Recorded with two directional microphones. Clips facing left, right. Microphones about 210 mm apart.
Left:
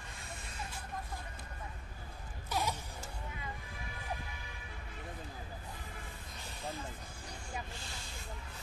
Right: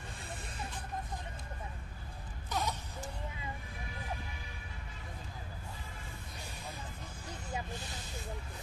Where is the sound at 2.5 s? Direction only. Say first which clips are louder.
Even; 10° left (ahead or behind).